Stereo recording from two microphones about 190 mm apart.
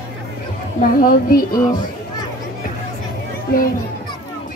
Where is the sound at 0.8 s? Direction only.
50° left (ahead or behind).